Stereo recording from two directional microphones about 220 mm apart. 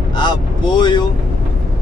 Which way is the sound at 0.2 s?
20° left (ahead or behind).